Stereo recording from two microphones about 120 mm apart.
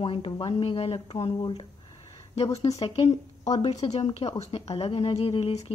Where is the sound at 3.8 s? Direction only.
45° left (ahead or behind).